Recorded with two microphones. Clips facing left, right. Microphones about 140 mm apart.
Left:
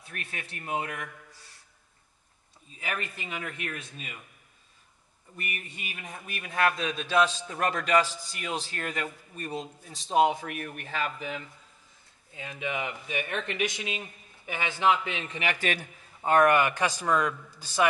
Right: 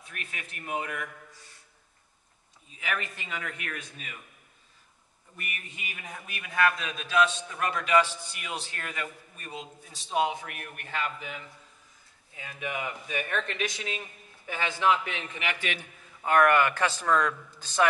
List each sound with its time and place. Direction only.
0.1 s a man's voice: 30° left (ahead or behind)
3.4 s a man's voice: 30° left (ahead or behind)
5.4 s a man's voice: 35° left (ahead or behind)
12.4 s a man's voice: 25° left (ahead or behind)
15.3 s a man's voice: 40° left (ahead or behind)
16.2 s a man's voice: 25° left (ahead or behind)